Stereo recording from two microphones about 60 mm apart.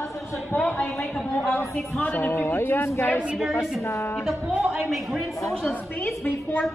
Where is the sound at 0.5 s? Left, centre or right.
Left.